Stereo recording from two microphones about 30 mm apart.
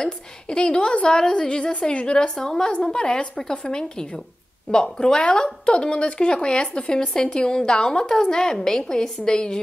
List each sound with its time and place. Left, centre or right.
0.5 s a woman's voice: left
1.7 s a woman's voice: left
2.1 s a woman's voice: left
2.9 s a woman's voice: left